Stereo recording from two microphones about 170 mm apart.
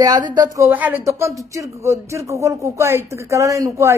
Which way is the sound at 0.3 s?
20° right (ahead or behind).